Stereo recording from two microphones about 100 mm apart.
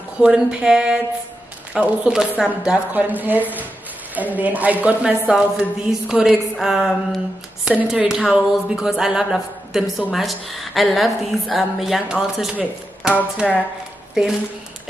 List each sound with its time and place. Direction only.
0.2 s speech: 5° right (ahead or behind)